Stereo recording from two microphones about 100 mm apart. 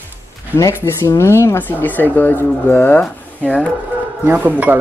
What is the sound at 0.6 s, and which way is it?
Speech, 30° left (ahead or behind).